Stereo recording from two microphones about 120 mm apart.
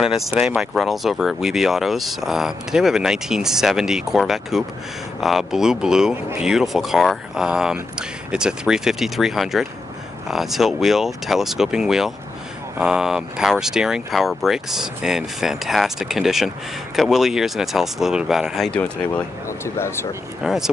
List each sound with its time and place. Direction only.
0.0 s speech: 5° right (ahead or behind)
18.7 s speech: 10° left (ahead or behind)
19.6 s speech: 20° left (ahead or behind)
20.4 s speech: 5° right (ahead or behind)